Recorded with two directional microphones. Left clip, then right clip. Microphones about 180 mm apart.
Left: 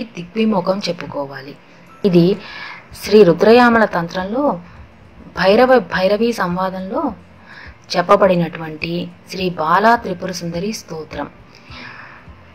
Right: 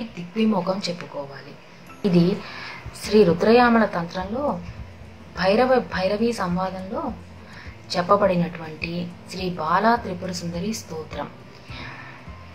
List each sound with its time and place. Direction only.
0.1 s a woman's voice: 35° left (ahead or behind)